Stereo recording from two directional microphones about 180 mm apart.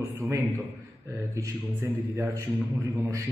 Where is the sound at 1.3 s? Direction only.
15° right (ahead or behind).